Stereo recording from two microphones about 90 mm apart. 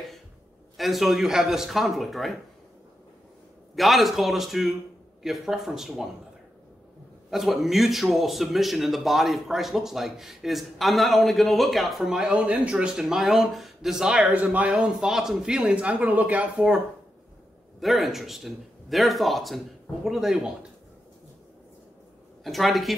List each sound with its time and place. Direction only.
0.7 s a man's voice: centre (ahead or behind)
3.7 s a man's voice: centre (ahead or behind)
7.2 s a man's voice: centre (ahead or behind)
17.7 s a man's voice: centre (ahead or behind)
22.4 s a man's voice: centre (ahead or behind)